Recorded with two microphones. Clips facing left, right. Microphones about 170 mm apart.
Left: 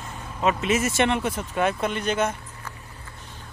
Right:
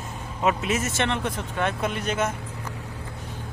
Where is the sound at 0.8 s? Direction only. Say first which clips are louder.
Left 3 dB; 10° left (ahead or behind).